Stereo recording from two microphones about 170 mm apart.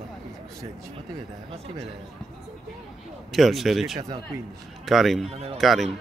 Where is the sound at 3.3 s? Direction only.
Centre (ahead or behind).